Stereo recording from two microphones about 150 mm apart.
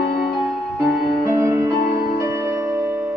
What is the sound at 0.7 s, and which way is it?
Music, 20° right (ahead or behind).